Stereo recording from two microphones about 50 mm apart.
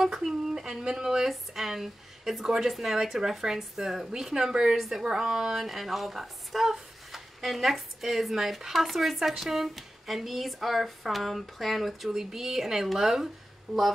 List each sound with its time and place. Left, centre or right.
0.2 s speech: centre